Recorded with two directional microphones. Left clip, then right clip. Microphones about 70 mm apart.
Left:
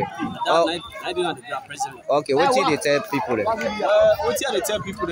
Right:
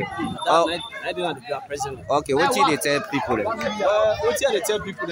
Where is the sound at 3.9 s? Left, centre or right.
Right.